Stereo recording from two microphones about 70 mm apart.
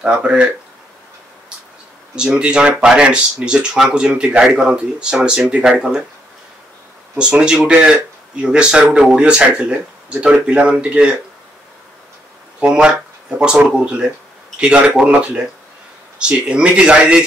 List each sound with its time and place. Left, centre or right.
0.0 s speech: centre
2.1 s speech: centre
7.2 s speech: centre
12.5 s speech: centre